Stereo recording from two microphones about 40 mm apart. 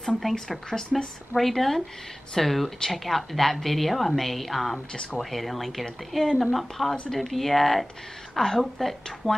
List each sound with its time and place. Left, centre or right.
0.2 s a woman's voice: centre
0.7 s speech: centre
1.3 s a woman's voice: centre